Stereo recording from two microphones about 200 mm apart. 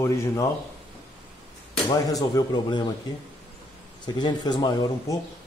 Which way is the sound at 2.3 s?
20° left (ahead or behind).